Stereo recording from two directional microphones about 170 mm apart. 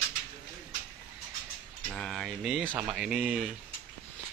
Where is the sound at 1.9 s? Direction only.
Centre (ahead or behind).